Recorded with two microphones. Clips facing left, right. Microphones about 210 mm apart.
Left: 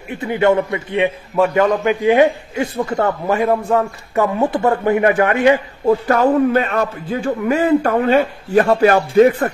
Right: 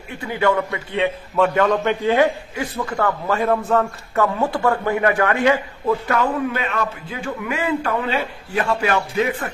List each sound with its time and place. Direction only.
0.1 s a man's voice: 20° left (ahead or behind)
3.3 s a man's voice: 15° left (ahead or behind)
5.9 s a man's voice: 40° left (ahead or behind)